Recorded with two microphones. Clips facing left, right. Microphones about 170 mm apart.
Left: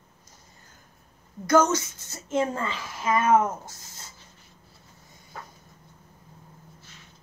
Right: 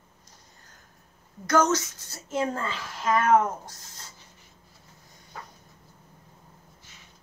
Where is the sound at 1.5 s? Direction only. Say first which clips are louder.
Left 2 dB; 10° left (ahead or behind).